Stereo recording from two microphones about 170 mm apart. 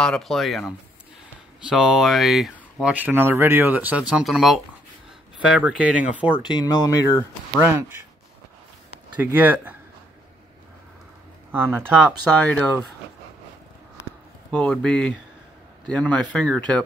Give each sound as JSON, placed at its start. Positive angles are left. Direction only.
{"t": 0.0, "sound": "speech", "side_deg": 0}
{"t": 6.4, "sound": "speech", "side_deg": 25}
{"t": 7.6, "sound": "speech", "side_deg": -15}
{"t": 9.2, "sound": "speech", "side_deg": -10}
{"t": 11.5, "sound": "speech", "side_deg": -10}
{"t": 14.5, "sound": "speech", "side_deg": 5}